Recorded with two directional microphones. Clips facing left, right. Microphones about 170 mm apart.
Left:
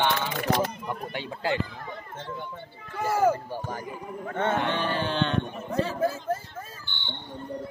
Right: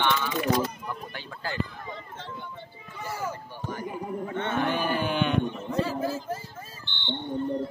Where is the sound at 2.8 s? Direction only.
60° left (ahead or behind).